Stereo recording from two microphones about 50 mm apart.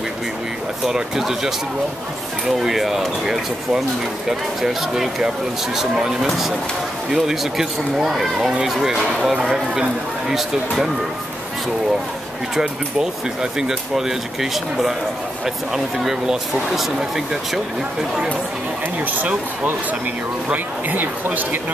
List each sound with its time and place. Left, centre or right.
0.8 s speech: centre
12.5 s speech: centre
19.1 s speech: right